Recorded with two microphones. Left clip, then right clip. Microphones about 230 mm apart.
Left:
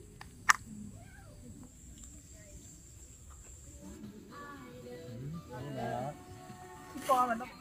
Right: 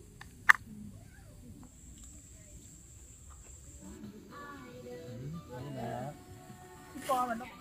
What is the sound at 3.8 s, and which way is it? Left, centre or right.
Music, centre.